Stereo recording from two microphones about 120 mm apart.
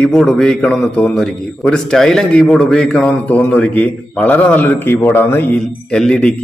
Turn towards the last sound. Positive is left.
turn(degrees=5)  # may be behind; listen again after turning